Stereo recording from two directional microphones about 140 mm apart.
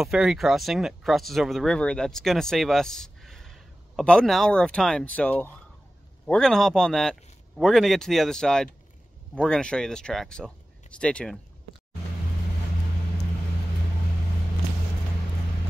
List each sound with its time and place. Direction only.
0.0 s speech: 5° right (ahead or behind)